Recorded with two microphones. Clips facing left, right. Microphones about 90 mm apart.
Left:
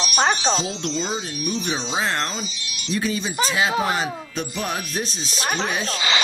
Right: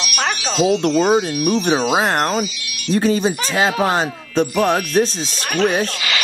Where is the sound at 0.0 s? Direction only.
30° left (ahead or behind).